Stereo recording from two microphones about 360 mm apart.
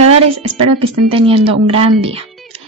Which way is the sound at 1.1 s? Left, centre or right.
Centre.